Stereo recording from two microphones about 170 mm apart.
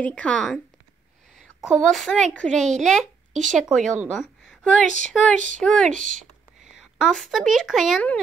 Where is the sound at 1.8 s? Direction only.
Centre (ahead or behind).